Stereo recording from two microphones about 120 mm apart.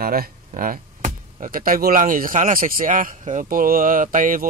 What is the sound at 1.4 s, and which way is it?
A man's voice, 90° right.